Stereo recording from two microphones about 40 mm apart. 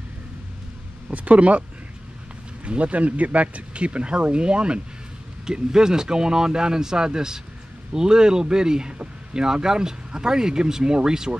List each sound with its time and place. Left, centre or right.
1.1 s speech: right
2.6 s speech: right; by 11.3 s centre